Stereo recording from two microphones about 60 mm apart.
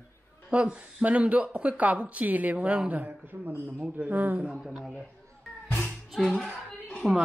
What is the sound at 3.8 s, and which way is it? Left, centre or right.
Speech, right.